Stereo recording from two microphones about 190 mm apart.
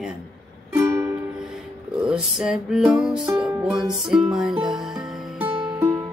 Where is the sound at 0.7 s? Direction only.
15° right (ahead or behind).